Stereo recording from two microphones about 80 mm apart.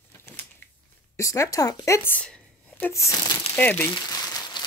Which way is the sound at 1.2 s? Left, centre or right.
Left.